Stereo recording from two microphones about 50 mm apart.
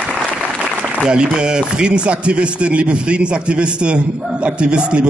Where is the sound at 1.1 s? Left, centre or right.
Centre.